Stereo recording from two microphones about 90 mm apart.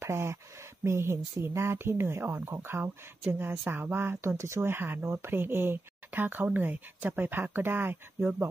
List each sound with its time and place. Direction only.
0.0 s speech: 30° right (ahead or behind)